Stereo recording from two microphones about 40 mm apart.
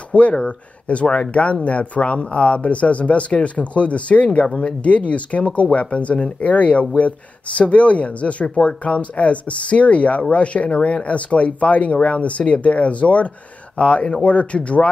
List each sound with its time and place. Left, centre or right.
0.1 s speech: left